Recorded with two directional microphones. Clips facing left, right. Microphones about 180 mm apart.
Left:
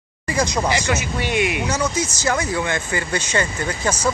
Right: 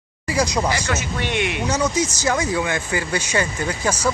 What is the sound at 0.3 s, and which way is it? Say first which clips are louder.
Speech: even; 10° right (ahead or behind).